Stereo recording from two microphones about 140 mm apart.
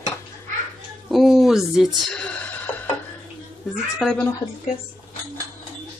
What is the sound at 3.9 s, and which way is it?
Speech, 5° left (ahead or behind).